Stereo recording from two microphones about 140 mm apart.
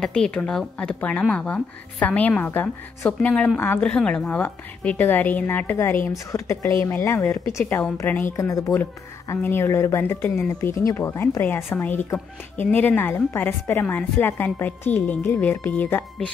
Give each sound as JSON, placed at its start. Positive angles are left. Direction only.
{"t": 0.0, "sound": "a woman's voice", "side_deg": 5}